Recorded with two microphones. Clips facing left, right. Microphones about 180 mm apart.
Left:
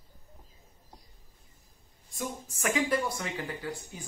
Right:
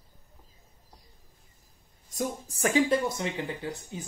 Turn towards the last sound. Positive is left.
turn(degrees=-20)  # may be behind; listen again after turning